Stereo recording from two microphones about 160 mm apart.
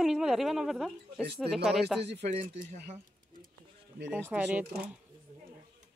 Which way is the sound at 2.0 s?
45° right (ahead or behind).